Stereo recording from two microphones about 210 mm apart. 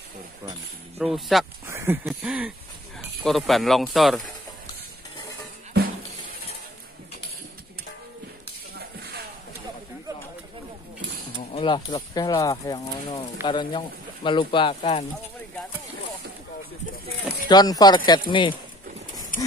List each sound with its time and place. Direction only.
0.9 s speech: centre (ahead or behind)
1.7 s a sound: 10° right (ahead or behind)
3.3 s speech: centre (ahead or behind)
11.5 s speech: 20° left (ahead or behind)
17.5 s speech: 20° left (ahead or behind)
19.3 s horse: 40° left (ahead or behind)